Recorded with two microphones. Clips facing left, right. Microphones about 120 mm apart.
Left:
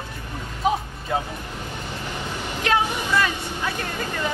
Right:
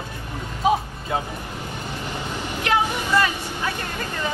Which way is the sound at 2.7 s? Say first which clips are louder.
Even; 10° right (ahead or behind).